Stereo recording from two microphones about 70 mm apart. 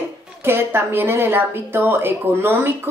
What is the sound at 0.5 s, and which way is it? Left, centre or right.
Speech, right.